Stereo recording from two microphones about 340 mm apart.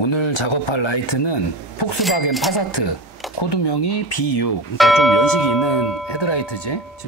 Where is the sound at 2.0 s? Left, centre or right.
Centre.